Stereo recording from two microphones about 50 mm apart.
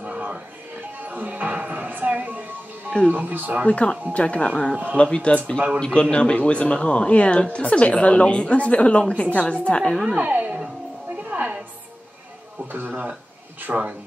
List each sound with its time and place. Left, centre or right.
0.0 s a sound: right
1.0 s music: right
3.1 s speech: right
3.6 s speech: left
10.1 s speech: right
11.2 s music: right
12.7 s speech: right